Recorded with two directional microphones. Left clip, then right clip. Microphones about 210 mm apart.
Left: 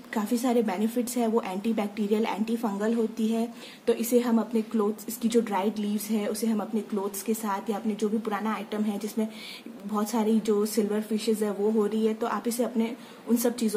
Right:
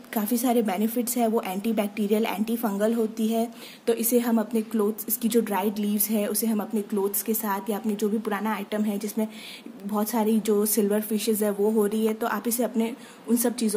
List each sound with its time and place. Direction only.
0.1 s a woman's voice: 25° right (ahead or behind)